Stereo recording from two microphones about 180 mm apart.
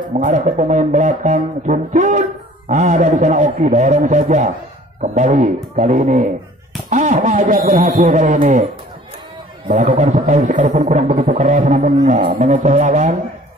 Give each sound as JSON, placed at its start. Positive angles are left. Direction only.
{"t": 0.2, "sound": "music", "side_deg": -45}
{"t": 2.7, "sound": "a man's voice", "side_deg": -45}
{"t": 6.9, "sound": "music", "side_deg": -45}
{"t": 9.7, "sound": "music", "side_deg": -40}